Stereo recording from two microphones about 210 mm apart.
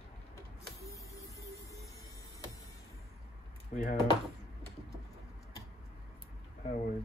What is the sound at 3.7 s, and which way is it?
Speech, 40° left (ahead or behind).